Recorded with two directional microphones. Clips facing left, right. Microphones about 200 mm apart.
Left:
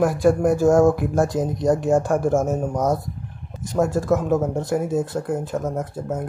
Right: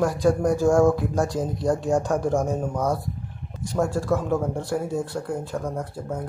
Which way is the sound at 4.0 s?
20° left (ahead or behind).